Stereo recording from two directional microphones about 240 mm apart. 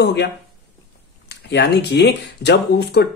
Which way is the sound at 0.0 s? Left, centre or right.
Left.